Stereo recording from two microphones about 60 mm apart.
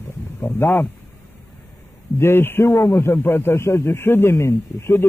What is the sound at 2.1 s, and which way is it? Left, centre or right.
A man's voice, left.